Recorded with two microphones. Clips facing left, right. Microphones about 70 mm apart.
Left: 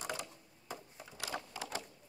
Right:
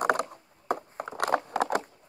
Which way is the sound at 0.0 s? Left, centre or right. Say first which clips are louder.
Right 16 dB; right.